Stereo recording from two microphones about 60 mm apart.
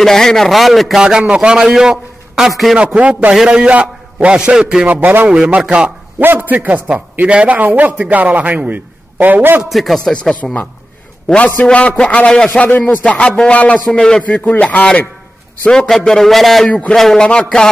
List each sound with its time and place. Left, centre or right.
0.0 s a man's voice: centre
1.0 s a man's voice: centre
2.5 s a man's voice: centre
3.0 s a man's voice: right
4.8 s a man's voice: right
5.3 s a man's voice: centre
6.2 s a man's voice: right
9.7 s speech: centre
11.5 s speech: centre
12.6 s a man's voice: left
15.7 s a man's voice: centre